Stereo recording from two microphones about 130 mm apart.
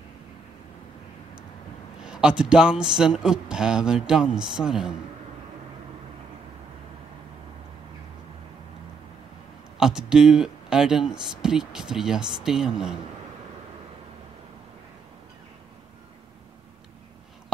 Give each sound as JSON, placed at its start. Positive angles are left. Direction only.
{"t": 2.0, "sound": "speech", "side_deg": -5}
{"t": 9.8, "sound": "speech", "side_deg": -5}